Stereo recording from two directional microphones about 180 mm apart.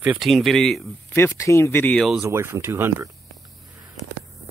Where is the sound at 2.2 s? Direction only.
15° right (ahead or behind).